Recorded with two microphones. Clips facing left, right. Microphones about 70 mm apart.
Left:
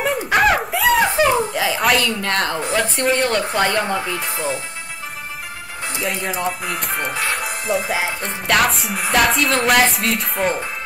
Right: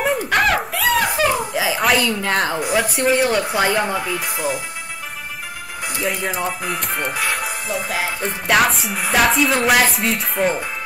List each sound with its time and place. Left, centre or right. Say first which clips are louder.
0.0 s a sound: left 1 dB; centre
1.2 s giggle: left 2 dB; left
1.5 s a woman's voice: even; centre
6.0 s speech: even; centre